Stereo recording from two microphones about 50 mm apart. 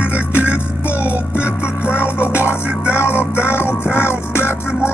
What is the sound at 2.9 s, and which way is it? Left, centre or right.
Music, left.